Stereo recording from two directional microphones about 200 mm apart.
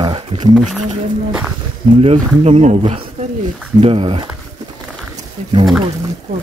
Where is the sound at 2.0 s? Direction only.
30° right (ahead or behind).